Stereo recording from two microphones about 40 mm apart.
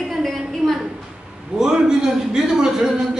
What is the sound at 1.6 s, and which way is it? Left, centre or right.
A man's voice, centre.